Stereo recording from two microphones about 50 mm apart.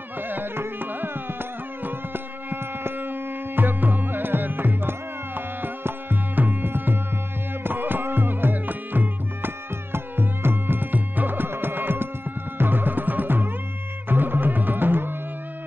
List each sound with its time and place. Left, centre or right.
0.2 s music: right